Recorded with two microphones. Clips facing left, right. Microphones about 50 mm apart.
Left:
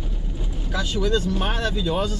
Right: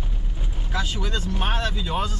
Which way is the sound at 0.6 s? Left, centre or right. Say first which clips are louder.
Left 4 dB; centre.